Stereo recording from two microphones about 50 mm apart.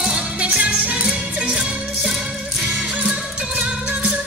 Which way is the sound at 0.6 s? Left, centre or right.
Right.